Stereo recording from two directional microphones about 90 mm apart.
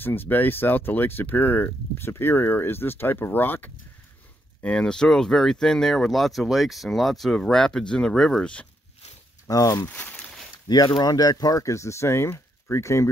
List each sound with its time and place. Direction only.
0.0 s speech: 25° left (ahead or behind)
4.6 s speech: 10° left (ahead or behind)
9.5 s speech: 40° left (ahead or behind)
9.8 s a sound: 15° left (ahead or behind)
11.0 s speech: 45° left (ahead or behind)